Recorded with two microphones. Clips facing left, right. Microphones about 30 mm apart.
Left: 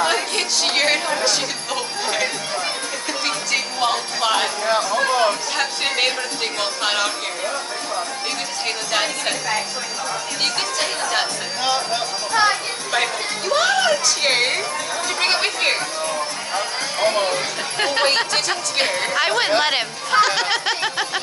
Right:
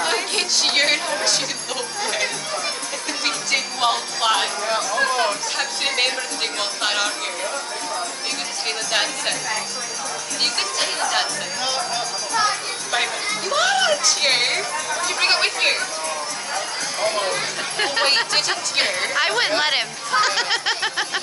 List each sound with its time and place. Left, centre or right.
0.4 s music: centre
3.3 s music: centre
4.9 s music: left
6.6 s speech: centre
11.6 s a child's voice: centre
12.9 s speech: centre
16.5 s speech: left
17.7 s speech: centre